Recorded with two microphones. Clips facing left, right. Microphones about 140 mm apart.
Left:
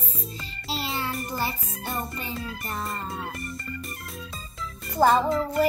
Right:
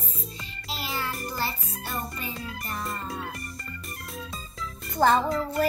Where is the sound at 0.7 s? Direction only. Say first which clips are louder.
Left 3 dB; 25° left (ahead or behind).